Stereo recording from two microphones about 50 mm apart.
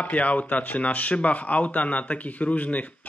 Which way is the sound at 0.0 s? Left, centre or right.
Left.